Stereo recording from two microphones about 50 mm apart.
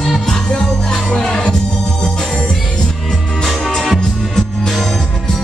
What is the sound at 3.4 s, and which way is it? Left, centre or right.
Music, centre.